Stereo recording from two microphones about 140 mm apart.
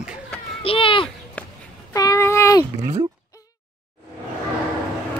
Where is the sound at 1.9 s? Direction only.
25° left (ahead or behind).